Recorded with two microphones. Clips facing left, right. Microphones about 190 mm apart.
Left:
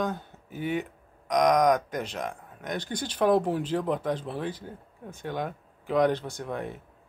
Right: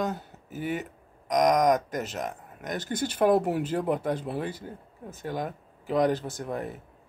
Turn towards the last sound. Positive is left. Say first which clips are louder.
# right 1 dB
turn(degrees=0)  # may be behind; listen again after turning